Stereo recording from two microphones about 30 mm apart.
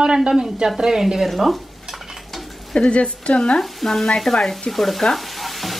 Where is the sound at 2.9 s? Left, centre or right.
Left.